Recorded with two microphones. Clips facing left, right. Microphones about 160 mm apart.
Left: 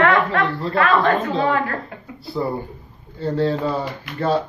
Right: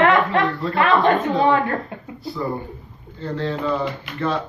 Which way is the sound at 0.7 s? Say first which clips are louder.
Even; 25° right (ahead or behind).